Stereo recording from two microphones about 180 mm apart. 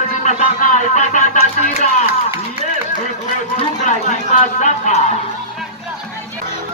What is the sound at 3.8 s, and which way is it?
Speech, 40° left (ahead or behind).